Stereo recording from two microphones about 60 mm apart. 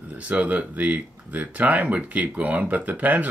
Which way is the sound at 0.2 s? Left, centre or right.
Right.